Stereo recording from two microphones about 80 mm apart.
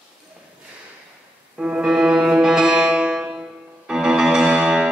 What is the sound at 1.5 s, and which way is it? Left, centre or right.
Music, centre.